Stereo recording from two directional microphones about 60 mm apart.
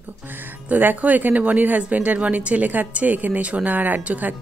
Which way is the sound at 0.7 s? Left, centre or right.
Right.